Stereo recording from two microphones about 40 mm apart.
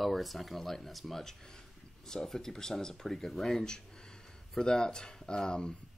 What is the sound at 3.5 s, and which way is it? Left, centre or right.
Speech, centre.